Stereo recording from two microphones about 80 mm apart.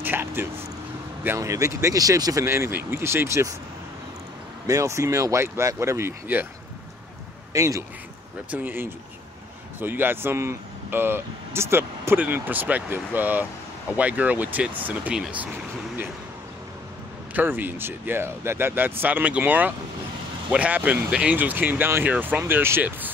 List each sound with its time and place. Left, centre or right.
0.0 s speech: right
2.4 s speech: right
4.6 s speech: right
7.5 s a man's voice: right
8.5 s speech: right
15.1 s speech: centre
17.3 s speech: right